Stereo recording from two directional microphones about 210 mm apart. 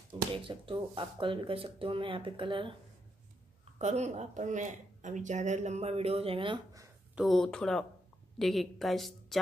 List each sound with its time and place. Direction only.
0.1 s speech: 25° right (ahead or behind)
3.7 s speech: 35° right (ahead or behind)
7.2 s a woman's voice: centre (ahead or behind)